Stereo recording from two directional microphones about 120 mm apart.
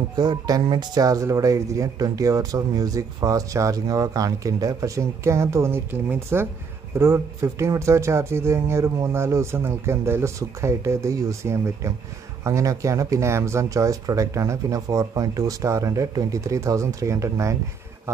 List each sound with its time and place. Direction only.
0.1 s speech: 35° right (ahead or behind)